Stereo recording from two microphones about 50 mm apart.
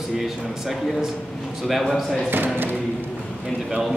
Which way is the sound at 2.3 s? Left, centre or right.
Right.